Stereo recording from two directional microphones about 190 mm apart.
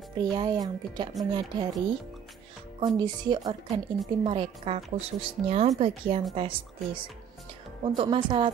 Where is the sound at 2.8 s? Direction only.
20° right (ahead or behind).